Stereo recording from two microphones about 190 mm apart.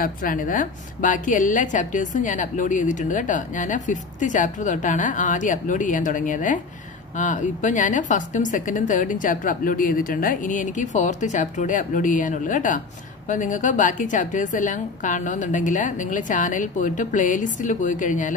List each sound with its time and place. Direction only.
0.0 s a woman's voice: 45° left (ahead or behind)